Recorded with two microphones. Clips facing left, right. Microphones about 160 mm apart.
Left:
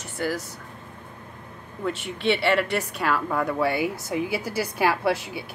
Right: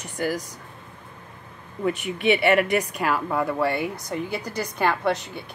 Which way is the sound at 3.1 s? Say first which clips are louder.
Left 1 dB; 5° right (ahead or behind).